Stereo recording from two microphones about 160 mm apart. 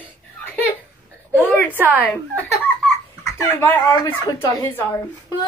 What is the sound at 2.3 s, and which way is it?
Speech, 10° left (ahead or behind).